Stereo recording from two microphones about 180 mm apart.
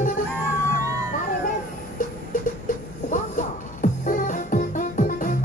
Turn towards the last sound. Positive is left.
turn(degrees=45)  # may be behind; listen again after turning